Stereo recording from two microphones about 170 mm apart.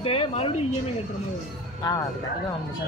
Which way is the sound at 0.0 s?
35° left (ahead or behind).